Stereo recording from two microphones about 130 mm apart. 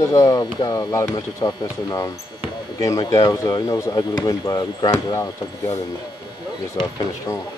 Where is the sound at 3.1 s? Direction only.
25° left (ahead or behind).